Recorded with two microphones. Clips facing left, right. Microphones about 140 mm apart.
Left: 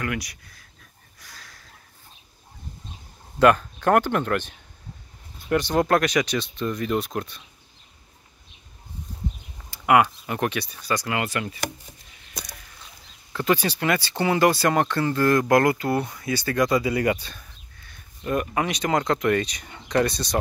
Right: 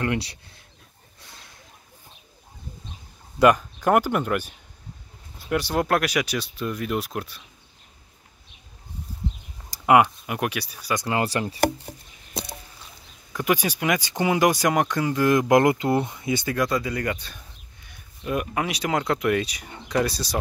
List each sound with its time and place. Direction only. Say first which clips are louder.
0.0 s speech: right 3 dB; 30° right (ahead or behind)
1.2 s a sound: left 1 dB; 25° right (ahead or behind)
3.3 s speech: even; 10° right (ahead or behind)
9.8 s speech: right 1 dB; 20° right (ahead or behind)
10.2 s speech: left 1 dB; 10° right (ahead or behind)
11.1 s speech: right 2 dB; 35° right (ahead or behind)
12.4 s a sound: right 6 dB; 25° right (ahead or behind)
13.3 s speech: left 1 dB; 10° right (ahead or behind)
16.5 s speech: left 5 dB; centre (ahead or behind)
16.8 s speech: left 5 dB; 10° left (ahead or behind)
18.2 s speech: left 1 dB; 5° right (ahead or behind)